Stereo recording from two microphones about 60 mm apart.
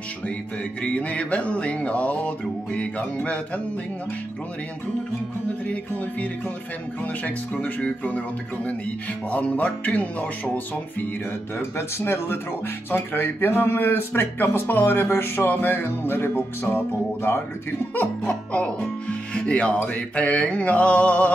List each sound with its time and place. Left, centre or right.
0.8 s speech: centre
5.7 s speech: left
9.3 s speech: left
11.5 s music: left
17.9 s speech: left